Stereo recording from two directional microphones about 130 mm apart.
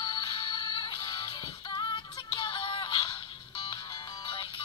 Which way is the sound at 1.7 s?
40° left (ahead or behind).